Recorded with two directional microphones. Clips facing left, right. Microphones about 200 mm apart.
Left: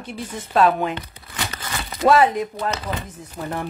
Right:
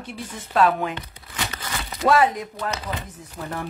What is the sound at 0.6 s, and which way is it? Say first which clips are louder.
Speech: left 2 dB; 25° left (ahead or behind).